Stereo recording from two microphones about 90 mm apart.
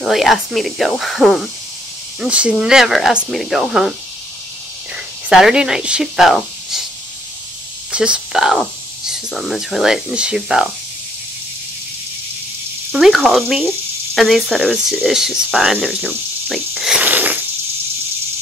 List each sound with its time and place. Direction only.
0.0 s speech: centre (ahead or behind)
2.1 s speech: 10° right (ahead or behind)
4.9 s speech: 5° right (ahead or behind)
7.9 s speech: 10° right (ahead or behind)
13.0 s speech: centre (ahead or behind)
17.0 s wheeze: 20° right (ahead or behind)